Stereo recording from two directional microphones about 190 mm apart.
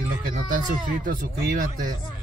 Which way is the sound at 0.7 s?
45° right (ahead or behind).